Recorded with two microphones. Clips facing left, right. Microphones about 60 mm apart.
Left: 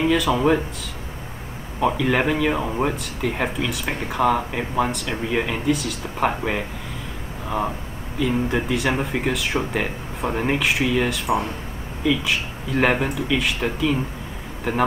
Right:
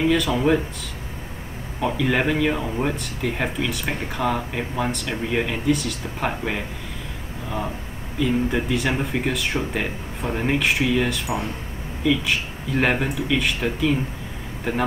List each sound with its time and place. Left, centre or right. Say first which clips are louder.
0.0 s speech: even; centre
2.0 s speech: right 3 dB; centre
2.5 s speech: left 2 dB; centre
2.8 s speech: left 1 dB; centre
8.2 s speech: even; centre